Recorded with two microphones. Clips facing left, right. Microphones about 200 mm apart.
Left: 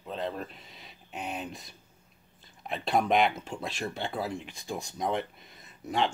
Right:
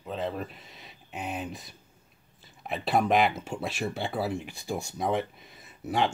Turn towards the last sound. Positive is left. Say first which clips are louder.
# right 2 dB
turn(degrees=-5)  # may be behind; listen again after turning